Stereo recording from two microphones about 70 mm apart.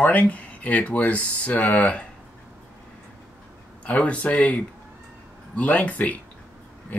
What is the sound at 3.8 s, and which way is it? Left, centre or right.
Speech, centre.